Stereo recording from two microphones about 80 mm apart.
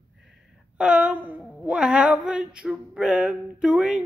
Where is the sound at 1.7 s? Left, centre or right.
Centre.